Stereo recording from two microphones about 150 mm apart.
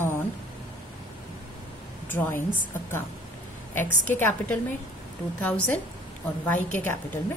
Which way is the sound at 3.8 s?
15° left (ahead or behind).